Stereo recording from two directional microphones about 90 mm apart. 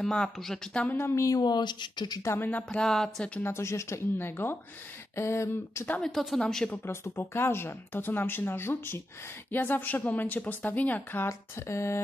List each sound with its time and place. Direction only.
0.0 s speech: 5° left (ahead or behind)
0.9 s a sound: 30° left (ahead or behind)
1.4 s speech: 55° left (ahead or behind)
2.2 s a woman's voice: 20° left (ahead or behind)
2.8 s speech: 5° left (ahead or behind)
3.3 s a woman's voice: 30° left (ahead or behind)
5.1 s a sound: 30° left (ahead or behind)
5.9 s speech: 5° left (ahead or behind)
6.9 s a woman's voice: 25° left (ahead or behind)